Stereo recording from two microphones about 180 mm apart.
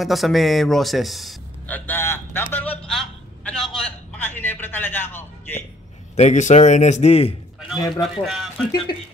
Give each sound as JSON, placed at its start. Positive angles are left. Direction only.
{"t": 0.0, "sound": "a sound", "side_deg": 0}
{"t": 6.1, "sound": "a man's voice", "side_deg": 40}
{"t": 7.9, "sound": "speech", "side_deg": 0}